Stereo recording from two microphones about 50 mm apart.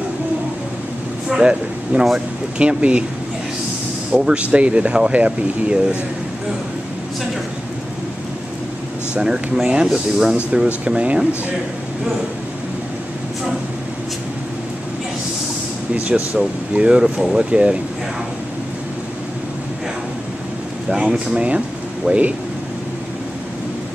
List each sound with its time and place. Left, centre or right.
1.3 s speech: centre
4.1 s speech: centre
9.1 s speech: centre
15.9 s speech: right
20.9 s speech: centre